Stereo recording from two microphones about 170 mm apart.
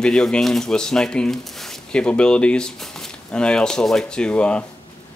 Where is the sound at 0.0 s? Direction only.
5° left (ahead or behind).